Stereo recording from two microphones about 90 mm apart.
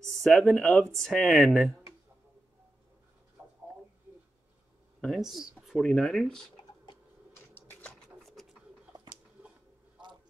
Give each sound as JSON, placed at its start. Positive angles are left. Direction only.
{"t": 0.1, "sound": "speech", "side_deg": 5}
{"t": 5.2, "sound": "speech", "side_deg": -5}
{"t": 5.8, "sound": "speech", "side_deg": 5}
{"t": 7.8, "sound": "pigeon", "side_deg": 5}
{"t": 8.9, "sound": "a sound", "side_deg": -55}